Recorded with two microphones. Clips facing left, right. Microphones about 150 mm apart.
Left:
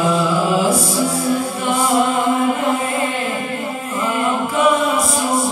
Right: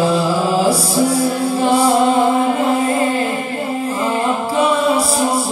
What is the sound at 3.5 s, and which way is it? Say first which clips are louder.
Chant: right 4 dB; 30° right (ahead or behind).